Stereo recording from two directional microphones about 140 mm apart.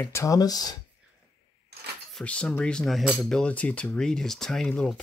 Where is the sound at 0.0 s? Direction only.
20° left (ahead or behind).